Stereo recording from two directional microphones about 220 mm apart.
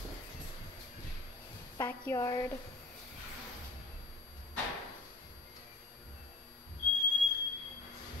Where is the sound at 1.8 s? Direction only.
15° left (ahead or behind).